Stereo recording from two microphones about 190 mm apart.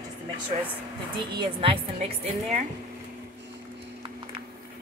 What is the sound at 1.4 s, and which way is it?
Speech, 30° right (ahead or behind).